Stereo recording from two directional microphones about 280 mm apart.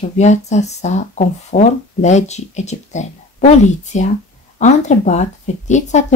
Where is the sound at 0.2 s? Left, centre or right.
Left.